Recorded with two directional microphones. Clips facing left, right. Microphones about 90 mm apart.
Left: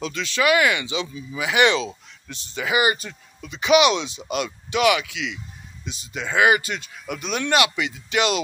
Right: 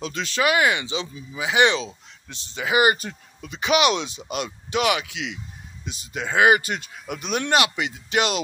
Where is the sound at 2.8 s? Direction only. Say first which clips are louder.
Right 4 dB; 45° right (ahead or behind).